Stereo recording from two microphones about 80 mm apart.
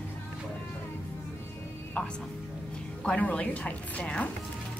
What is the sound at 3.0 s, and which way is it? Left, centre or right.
Speech, centre.